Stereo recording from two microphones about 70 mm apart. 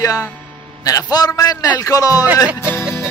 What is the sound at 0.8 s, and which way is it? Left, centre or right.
Speech, left.